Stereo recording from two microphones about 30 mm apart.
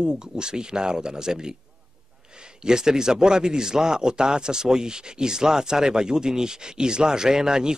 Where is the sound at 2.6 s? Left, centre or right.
Right.